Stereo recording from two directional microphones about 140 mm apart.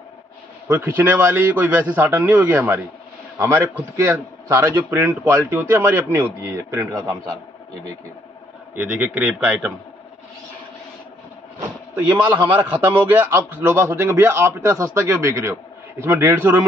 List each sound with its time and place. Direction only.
0.7 s a man's voice: 15° right (ahead or behind)
8.9 s a man's voice: 15° right (ahead or behind)
11.9 s a man's voice: 10° right (ahead or behind)